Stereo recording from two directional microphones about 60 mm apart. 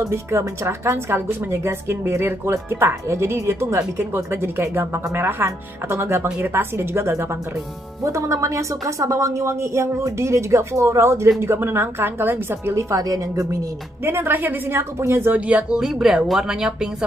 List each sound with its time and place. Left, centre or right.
0.0 s speech: right
8.0 s speech: right
12.7 s a woman's voice: right
14.0 s a woman's voice: right
15.3 s speech: right
15.8 s speech: centre